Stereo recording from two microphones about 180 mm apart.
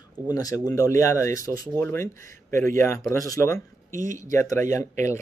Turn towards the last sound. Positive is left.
turn(degrees=15)  # may be behind; listen again after turning